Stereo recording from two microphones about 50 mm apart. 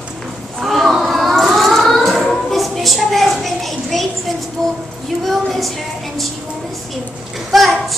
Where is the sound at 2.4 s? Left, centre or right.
Centre.